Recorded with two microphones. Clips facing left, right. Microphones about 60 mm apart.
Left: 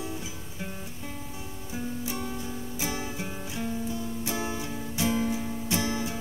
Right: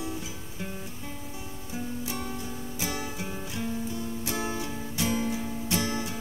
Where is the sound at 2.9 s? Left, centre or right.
Centre.